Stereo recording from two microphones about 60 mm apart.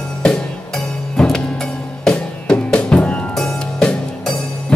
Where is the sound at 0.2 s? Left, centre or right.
Centre.